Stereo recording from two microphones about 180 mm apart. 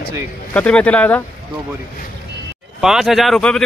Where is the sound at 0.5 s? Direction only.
5° left (ahead or behind).